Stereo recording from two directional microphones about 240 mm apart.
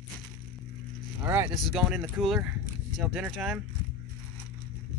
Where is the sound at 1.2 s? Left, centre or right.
Centre.